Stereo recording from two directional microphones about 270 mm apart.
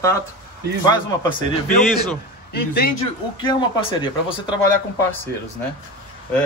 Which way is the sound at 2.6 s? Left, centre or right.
Left.